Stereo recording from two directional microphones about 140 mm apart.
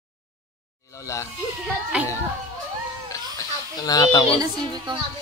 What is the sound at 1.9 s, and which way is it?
Speech, 10° right (ahead or behind).